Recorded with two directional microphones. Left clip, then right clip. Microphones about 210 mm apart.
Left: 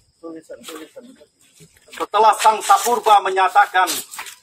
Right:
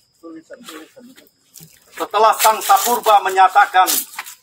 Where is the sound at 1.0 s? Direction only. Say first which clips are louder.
Left 3 dB; 45° left (ahead or behind).